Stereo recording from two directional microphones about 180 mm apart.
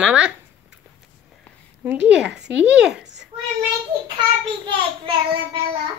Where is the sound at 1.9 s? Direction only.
5° right (ahead or behind).